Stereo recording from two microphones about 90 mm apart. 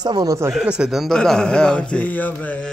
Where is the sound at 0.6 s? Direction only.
10° right (ahead or behind).